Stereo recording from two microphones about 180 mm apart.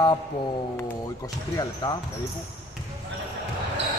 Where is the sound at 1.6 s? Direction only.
20° left (ahead or behind).